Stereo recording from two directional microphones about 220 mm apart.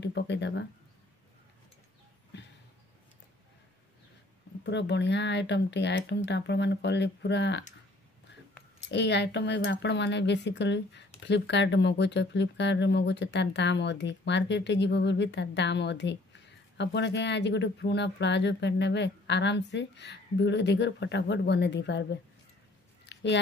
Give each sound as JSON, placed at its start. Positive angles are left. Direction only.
{"t": 0.0, "sound": "speech", "side_deg": 50}
{"t": 4.6, "sound": "speech", "side_deg": 50}
{"t": 8.9, "sound": "speech", "side_deg": 50}
{"t": 23.0, "sound": "a sound", "side_deg": 50}